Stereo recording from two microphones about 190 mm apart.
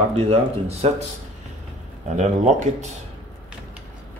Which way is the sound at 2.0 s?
40° right (ahead or behind).